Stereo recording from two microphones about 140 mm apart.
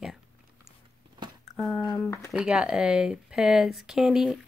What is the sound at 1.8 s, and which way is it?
Speech, 30° left (ahead or behind).